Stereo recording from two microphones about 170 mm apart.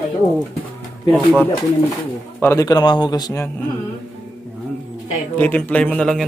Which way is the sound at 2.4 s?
20° left (ahead or behind).